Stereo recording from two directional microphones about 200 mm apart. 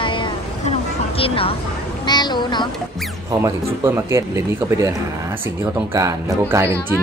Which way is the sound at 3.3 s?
15° right (ahead or behind).